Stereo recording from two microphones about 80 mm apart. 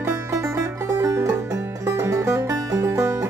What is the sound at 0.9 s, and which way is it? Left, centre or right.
Music, right.